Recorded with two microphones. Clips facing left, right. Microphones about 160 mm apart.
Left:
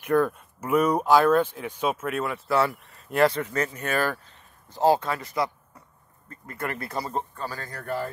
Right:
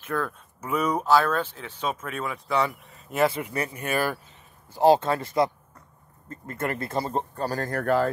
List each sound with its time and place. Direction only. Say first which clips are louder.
0.0 s speech: left 7 dB; 15° left (ahead or behind); by 7.2 s 25° right (ahead or behind)
7.3 s speech: right 7 dB; 45° right (ahead or behind)
7.8 s speech: right 7 dB; 90° right